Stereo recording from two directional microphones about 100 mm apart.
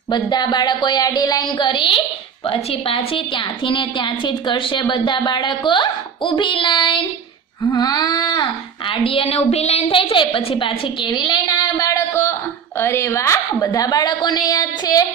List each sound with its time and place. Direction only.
0.1 s a woman's voice: 45° left (ahead or behind)
2.4 s a woman's voice: 70° left (ahead or behind); by 7.1 s 55° left (ahead or behind)
7.6 s speech: 45° left (ahead or behind)
11.7 s a sound: 30° left (ahead or behind)
13.7 s a woman's voice: 35° left (ahead or behind)